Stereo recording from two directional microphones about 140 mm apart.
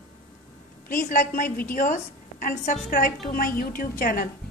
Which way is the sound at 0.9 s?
70° left (ahead or behind).